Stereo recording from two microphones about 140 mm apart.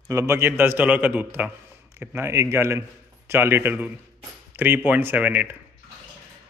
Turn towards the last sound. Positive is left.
turn(degrees=-10)  # may be behind; listen again after turning